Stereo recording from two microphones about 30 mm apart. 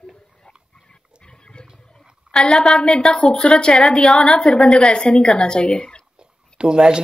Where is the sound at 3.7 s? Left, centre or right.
Left.